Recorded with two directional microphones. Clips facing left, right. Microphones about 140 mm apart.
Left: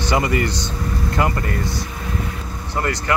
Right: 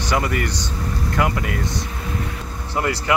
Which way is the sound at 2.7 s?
15° right (ahead or behind).